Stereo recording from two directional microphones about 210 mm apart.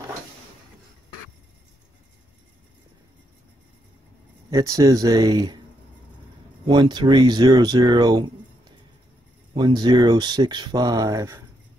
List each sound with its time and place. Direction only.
4.5 s speech: 15° right (ahead or behind)
6.7 s speech: 20° right (ahead or behind)